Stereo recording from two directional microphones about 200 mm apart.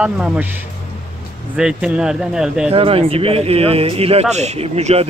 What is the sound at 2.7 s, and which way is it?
A man's voice, 30° right (ahead or behind).